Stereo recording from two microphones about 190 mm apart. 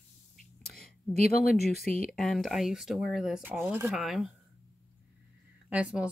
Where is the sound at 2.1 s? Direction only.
Centre (ahead or behind).